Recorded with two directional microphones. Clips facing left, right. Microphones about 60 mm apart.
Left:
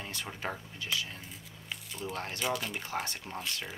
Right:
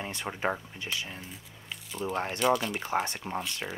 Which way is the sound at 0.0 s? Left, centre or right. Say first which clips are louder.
Right 6 dB; right.